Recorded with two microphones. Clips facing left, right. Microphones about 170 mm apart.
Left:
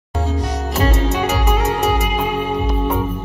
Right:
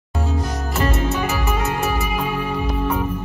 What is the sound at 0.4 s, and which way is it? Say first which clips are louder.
Music: left 4 dB; 70° left (ahead or behind).